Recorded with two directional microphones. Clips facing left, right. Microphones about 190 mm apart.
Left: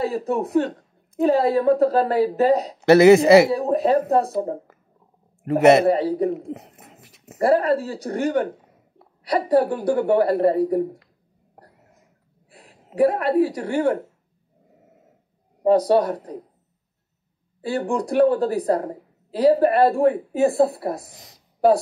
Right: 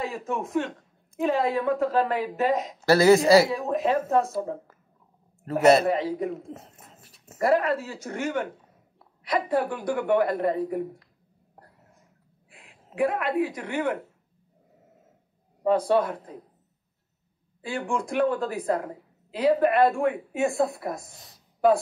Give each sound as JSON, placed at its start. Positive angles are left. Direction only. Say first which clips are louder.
{"t": 0.0, "sound": "speech", "louder": "left 7 dB", "side_deg": 35}
{"t": 2.8, "sound": "speech", "louder": "left 6 dB", "side_deg": 20}
{"t": 3.4, "sound": "speech", "louder": "left 6 dB", "side_deg": 35}
{"t": 5.4, "sound": "a man's voice", "louder": "left 4 dB", "side_deg": 20}
{"t": 5.9, "sound": "speech", "louder": "left 6 dB", "side_deg": 35}
{"t": 6.3, "sound": "speech", "louder": "left 7 dB", "side_deg": 15}
{"t": 6.7, "sound": "dog", "louder": "left 4 dB", "side_deg": 70}
{"t": 7.0, "sound": "a sound", "louder": "left 6 dB", "side_deg": 20}
{"t": 7.3, "sound": "speech", "louder": "left 5 dB", "side_deg": 35}
{"t": 12.4, "sound": "a woman's voice", "louder": "left 5 dB", "side_deg": 40}
{"t": 15.6, "sound": "speech", "louder": "left 5 dB", "side_deg": 40}
{"t": 17.6, "sound": "speech", "louder": "left 6 dB", "side_deg": 35}
{"t": 21.1, "sound": "a woman's voice", "louder": "left 3 dB", "side_deg": 20}